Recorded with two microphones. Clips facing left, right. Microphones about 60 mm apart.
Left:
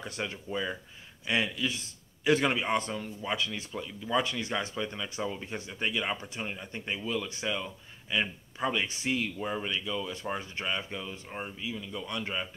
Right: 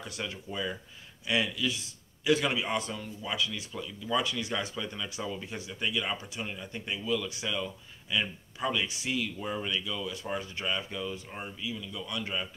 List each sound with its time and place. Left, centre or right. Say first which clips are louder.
0.0 s speech: left 2 dB; left
0.5 s speech: left 1 dB; left
9.4 s speech: even; left
11.6 s speech: left 1 dB; left